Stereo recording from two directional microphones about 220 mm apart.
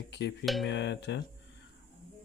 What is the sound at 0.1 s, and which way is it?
Speech, 50° left (ahead or behind).